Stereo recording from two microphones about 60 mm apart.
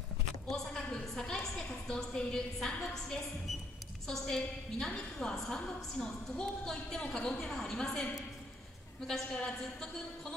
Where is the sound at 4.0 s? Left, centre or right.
Centre.